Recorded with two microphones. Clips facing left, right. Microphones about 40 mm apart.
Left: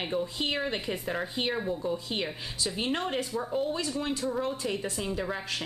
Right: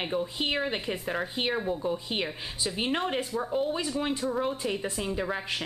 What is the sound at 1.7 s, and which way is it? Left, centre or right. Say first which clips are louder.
A woman's voice: right 1 dB; centre.